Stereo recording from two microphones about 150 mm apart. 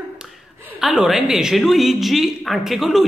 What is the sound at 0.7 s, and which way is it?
A woman's voice, centre (ahead or behind).